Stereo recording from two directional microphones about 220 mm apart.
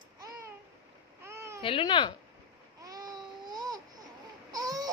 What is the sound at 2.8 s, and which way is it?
Baby cry, 15° right (ahead or behind).